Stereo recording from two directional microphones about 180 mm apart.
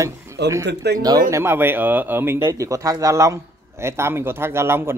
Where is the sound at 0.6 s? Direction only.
65° right (ahead or behind).